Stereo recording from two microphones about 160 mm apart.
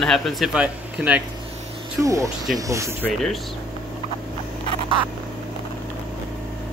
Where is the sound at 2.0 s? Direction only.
20° right (ahead or behind).